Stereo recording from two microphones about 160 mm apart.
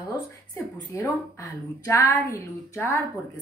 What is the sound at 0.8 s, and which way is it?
A woman's voice, 20° left (ahead or behind).